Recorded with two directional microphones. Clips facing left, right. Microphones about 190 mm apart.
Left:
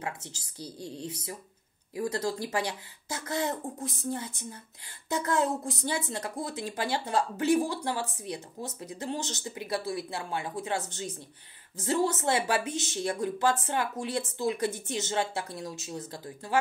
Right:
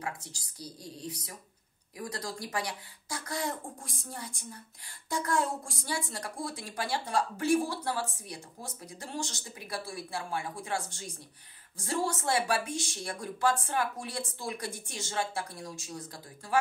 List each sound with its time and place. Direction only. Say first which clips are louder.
0.0 s speech: left 2 dB; 25° left (ahead or behind)